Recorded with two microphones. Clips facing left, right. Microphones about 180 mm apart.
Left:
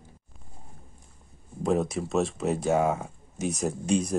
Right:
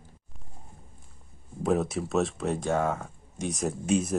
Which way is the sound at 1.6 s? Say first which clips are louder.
Even; centre (ahead or behind).